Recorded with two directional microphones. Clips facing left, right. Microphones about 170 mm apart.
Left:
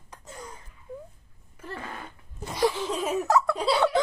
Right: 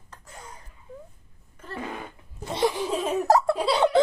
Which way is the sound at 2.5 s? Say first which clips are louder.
Right 1 dB; 25° right (ahead or behind).